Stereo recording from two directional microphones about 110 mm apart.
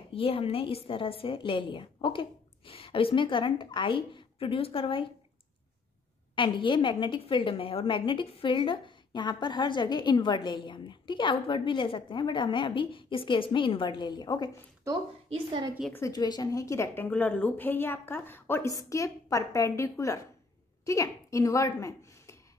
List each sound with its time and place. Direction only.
0.1 s a woman's voice: 60° left (ahead or behind)
6.3 s a woman's voice: 50° left (ahead or behind)
16.1 s a woman's voice: 40° left (ahead or behind)